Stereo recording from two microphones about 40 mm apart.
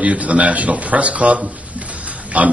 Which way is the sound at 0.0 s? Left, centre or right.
Right.